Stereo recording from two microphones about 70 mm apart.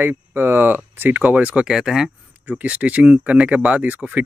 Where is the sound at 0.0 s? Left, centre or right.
Right; by 2.0 s centre.